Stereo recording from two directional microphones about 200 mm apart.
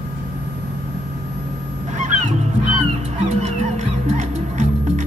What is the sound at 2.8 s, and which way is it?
Music, 35° right (ahead or behind).